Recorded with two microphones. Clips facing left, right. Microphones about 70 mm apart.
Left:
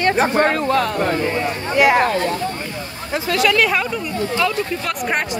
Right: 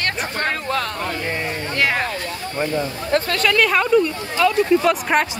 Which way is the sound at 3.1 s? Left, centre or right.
Centre.